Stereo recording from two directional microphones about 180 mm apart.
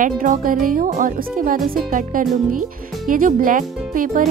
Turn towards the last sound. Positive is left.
turn(degrees=-50)  # may be behind; listen again after turning